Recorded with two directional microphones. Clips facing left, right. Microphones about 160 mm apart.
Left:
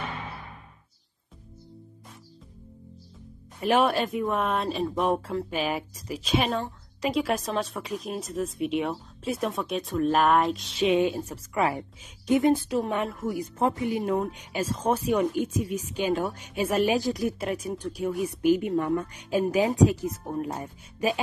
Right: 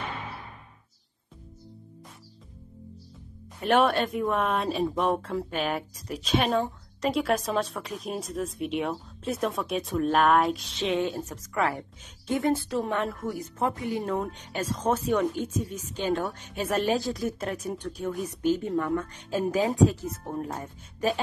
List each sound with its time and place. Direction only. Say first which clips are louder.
3.6 s speech: even; 5° left (ahead or behind)
10.8 s a woman's voice: left 5 dB; 10° left (ahead or behind)
12.9 s a woman's voice: left 1 dB; 5° left (ahead or behind)
13.6 s a woman's voice: left 3 dB; 20° left (ahead or behind)
14.1 s a woman's voice: left 3 dB; 5° left (ahead or behind)